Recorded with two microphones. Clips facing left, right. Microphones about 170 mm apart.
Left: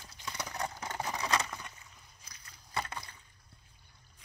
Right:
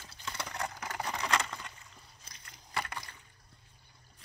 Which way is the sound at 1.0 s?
15° left (ahead or behind).